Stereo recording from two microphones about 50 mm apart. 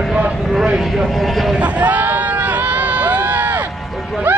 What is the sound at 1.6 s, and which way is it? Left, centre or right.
Crowd, right.